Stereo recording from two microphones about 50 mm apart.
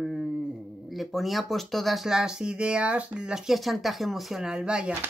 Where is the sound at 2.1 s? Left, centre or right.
Centre.